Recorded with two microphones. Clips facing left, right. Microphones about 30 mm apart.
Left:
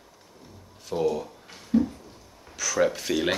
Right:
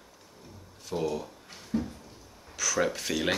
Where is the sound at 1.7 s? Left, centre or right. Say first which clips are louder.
Left 9 dB; left.